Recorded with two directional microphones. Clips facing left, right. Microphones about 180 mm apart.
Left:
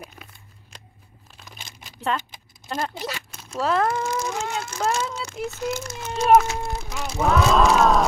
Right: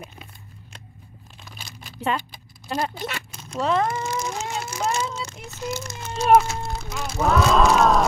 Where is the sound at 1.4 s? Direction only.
20° left (ahead or behind).